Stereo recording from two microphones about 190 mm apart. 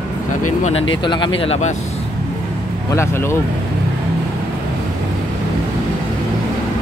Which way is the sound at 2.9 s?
15° left (ahead or behind).